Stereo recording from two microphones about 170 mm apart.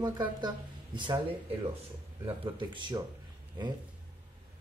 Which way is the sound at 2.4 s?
30° right (ahead or behind).